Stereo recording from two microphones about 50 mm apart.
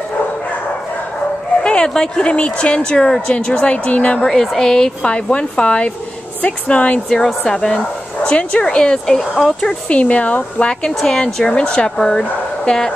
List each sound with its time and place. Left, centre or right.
1.6 s speech: centre
4.2 s speech: centre
5.0 s speech: left
7.4 s speech: centre
9.8 s speech: left